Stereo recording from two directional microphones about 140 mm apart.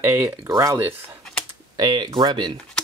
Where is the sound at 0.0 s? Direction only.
15° right (ahead or behind).